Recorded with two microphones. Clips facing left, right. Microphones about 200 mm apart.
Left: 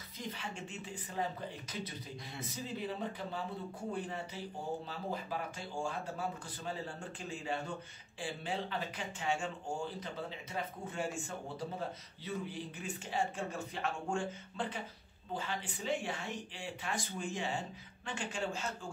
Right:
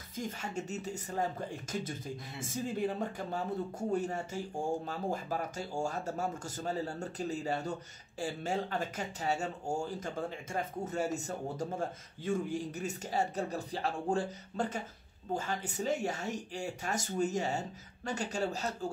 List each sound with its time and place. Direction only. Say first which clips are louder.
0.2 s speech: right 5 dB; 45° right (ahead or behind)